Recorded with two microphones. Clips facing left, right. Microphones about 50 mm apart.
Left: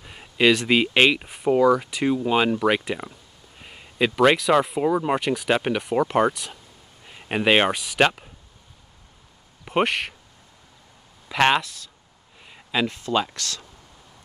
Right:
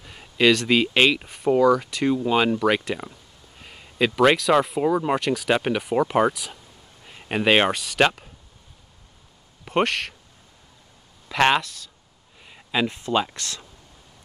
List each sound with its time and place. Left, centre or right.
0.0 s speech: centre
9.7 s speech: centre
11.2 s speech: centre
12.4 s a sound: centre
12.8 s speech: centre